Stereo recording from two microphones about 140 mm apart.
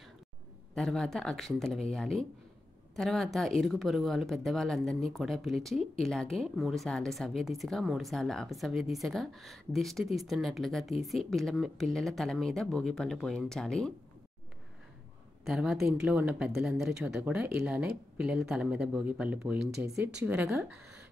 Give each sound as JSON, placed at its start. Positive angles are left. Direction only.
{"t": 0.7, "sound": "speech", "side_deg": 5}
{"t": 15.4, "sound": "speech", "side_deg": 0}
{"t": 19.9, "sound": "a woman's voice", "side_deg": -20}